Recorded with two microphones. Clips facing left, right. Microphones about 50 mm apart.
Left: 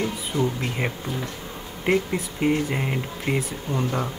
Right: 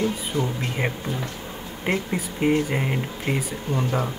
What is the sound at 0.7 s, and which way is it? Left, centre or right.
Speech, centre.